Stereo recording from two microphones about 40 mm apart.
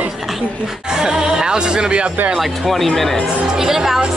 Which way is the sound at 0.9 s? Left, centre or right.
Centre.